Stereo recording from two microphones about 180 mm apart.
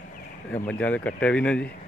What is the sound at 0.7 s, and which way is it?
Speech, 10° left (ahead or behind).